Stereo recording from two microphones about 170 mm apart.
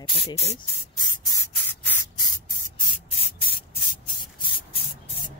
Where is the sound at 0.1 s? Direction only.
35° left (ahead or behind); by 2.0 s 15° left (ahead or behind).